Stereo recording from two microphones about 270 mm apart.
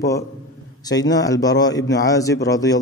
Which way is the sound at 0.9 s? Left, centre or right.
Centre.